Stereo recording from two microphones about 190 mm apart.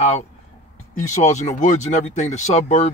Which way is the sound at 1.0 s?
40° left (ahead or behind).